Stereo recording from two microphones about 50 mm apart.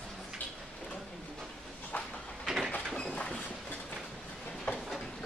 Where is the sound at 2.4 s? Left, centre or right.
Centre.